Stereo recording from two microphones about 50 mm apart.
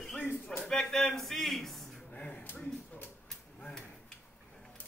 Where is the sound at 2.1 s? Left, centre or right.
Left.